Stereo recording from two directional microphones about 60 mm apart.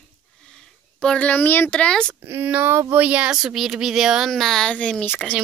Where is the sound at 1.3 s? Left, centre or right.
Left.